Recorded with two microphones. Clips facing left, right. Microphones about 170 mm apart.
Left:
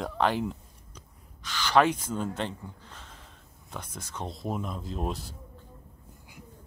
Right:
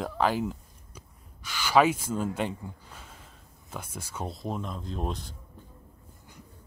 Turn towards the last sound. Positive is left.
turn(degrees=5)  # may be behind; listen again after turning